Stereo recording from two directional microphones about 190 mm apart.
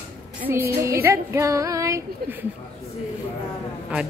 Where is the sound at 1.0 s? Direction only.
15° right (ahead or behind).